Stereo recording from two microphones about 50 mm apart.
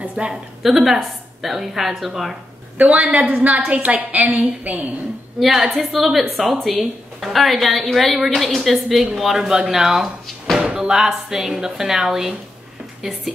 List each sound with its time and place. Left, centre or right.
0.1 s a woman's voice: centre
0.6 s a woman's voice: centre
2.8 s a woman's voice: right
5.6 s a woman's voice: centre
10.6 s music: right
10.9 s a woman's voice: centre